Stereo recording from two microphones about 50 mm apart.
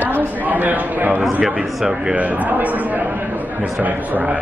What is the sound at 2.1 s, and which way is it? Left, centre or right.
Speech, right.